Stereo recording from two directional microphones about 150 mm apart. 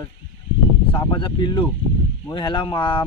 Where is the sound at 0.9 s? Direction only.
30° left (ahead or behind).